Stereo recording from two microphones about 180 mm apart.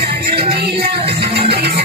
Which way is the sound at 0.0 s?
60° right (ahead or behind).